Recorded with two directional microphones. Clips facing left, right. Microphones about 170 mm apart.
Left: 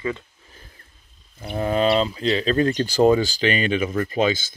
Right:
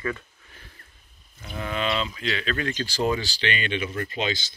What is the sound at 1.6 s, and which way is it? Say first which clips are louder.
Speech: left 8 dB; 40° left (ahead or behind).